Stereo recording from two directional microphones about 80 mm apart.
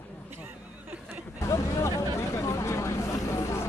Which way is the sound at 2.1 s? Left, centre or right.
Left.